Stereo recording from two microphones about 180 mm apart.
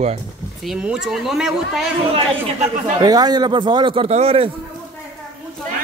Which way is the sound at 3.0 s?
20° right (ahead or behind).